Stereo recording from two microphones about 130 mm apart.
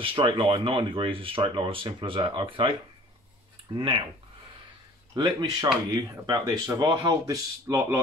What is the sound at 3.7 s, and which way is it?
Speech, 35° right (ahead or behind).